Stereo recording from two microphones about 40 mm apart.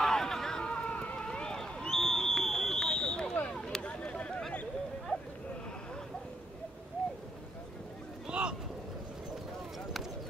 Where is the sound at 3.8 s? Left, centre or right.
Left.